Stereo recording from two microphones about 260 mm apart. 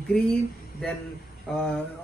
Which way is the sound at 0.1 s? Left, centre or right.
Centre.